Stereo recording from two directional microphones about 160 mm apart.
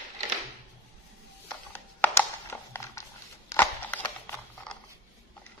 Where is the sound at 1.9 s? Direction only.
15° left (ahead or behind).